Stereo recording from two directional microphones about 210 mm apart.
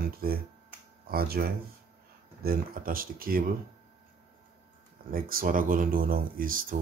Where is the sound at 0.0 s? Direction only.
45° right (ahead or behind).